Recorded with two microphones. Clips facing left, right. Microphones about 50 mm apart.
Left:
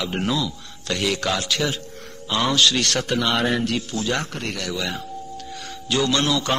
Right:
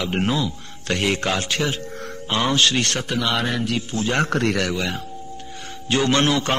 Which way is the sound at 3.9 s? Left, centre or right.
Right.